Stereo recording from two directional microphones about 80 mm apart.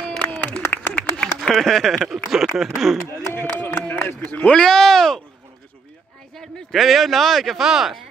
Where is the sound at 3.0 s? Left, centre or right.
Left.